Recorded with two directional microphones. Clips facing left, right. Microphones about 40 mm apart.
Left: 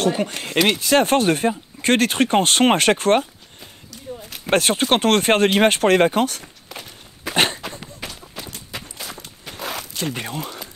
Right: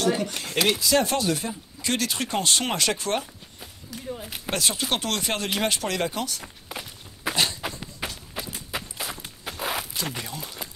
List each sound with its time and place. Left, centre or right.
0.0 s speech: left
4.5 s speech: left
6.4 s walk: centre
7.3 s a sound: left
8.0 s a sound: centre
8.4 s walk: centre
10.1 s speech: left